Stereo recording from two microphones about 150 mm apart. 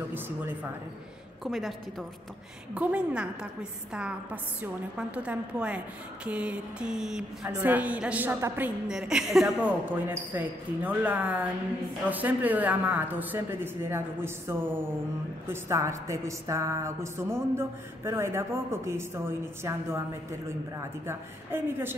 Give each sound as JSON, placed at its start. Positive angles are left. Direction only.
{"t": 0.1, "sound": "a woman's voice", "side_deg": -10}
{"t": 1.4, "sound": "a woman's voice", "side_deg": 0}
{"t": 9.8, "sound": "a woman's voice", "side_deg": -15}
{"t": 21.1, "sound": "a woman's voice", "side_deg": -15}